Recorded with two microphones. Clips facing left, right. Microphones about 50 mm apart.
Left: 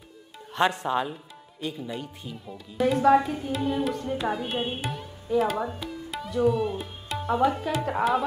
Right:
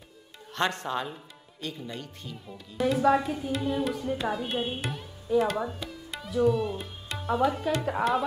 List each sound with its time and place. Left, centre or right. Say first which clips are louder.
0.6 s speech: left 5 dB; centre